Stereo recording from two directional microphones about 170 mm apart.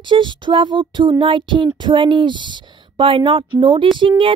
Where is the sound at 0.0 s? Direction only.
30° right (ahead or behind).